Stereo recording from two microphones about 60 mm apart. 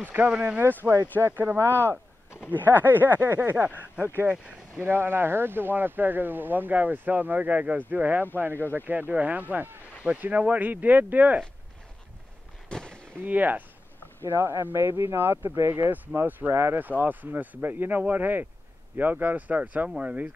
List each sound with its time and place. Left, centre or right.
0.0 s speech: right
0.3 s speech: centre
1.2 s speech: right
3.6 s speech: right
4.7 s speech: right
12.6 s fireworks: centre
13.2 s speech: right
14.2 s speech: right
16.8 s speech: right